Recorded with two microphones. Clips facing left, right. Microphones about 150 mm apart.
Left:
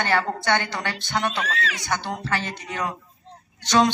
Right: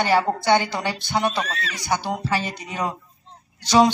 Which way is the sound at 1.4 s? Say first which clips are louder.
Left 3 dB; 90° left.